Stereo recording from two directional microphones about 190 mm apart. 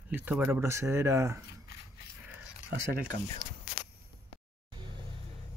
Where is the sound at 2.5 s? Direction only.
5° right (ahead or behind).